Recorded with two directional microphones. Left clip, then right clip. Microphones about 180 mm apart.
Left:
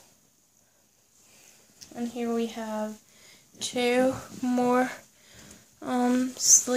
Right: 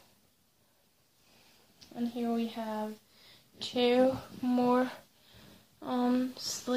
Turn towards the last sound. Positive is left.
turn(degrees=35)  # may be behind; listen again after turning